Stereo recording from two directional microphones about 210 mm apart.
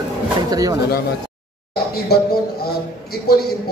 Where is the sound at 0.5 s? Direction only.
15° right (ahead or behind).